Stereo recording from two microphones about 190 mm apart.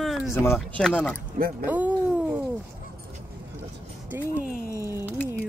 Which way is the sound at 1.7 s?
10° right (ahead or behind).